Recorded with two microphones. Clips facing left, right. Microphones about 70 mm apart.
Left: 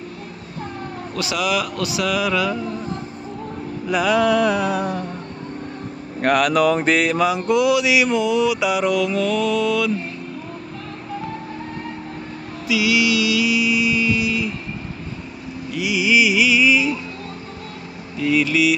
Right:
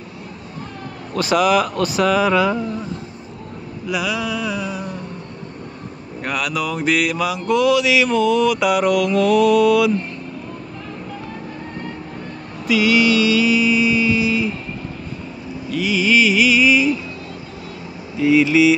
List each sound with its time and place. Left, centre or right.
1.1 s a man's voice: right
3.8 s music: left
6.2 s mantra: left; by 9.9 s centre
12.6 s vehicle: right
15.7 s music: centre
18.2 s speech: right